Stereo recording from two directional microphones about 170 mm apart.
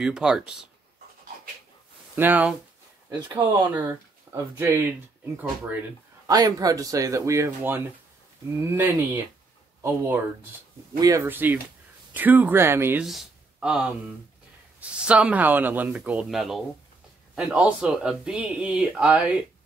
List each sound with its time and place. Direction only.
0.0 s speech: 5° right (ahead or behind)
2.1 s speech: 10° right (ahead or behind)
3.1 s speech: 25° right (ahead or behind)
3.7 s speech: 10° right (ahead or behind)
6.2 s speech: 20° right (ahead or behind)
13.0 s speech: centre (ahead or behind)